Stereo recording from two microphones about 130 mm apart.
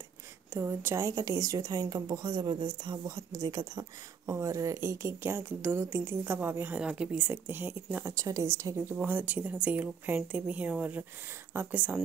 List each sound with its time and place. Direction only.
0.5 s a woman's voice: 15° right (ahead or behind)
8.1 s a woman's voice: 25° right (ahead or behind)